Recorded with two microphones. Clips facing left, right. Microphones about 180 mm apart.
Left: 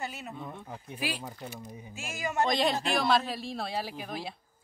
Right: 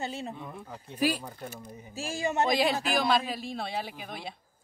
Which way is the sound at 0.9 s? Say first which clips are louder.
Right 8 dB; 40° right (ahead or behind).